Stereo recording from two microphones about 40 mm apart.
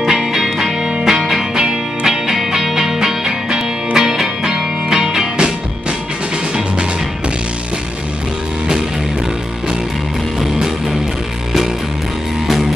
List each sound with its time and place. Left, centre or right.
0.0 s music: centre
10.4 s music: centre